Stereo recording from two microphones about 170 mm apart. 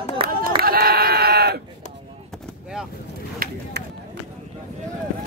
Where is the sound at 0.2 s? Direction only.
30° right (ahead or behind).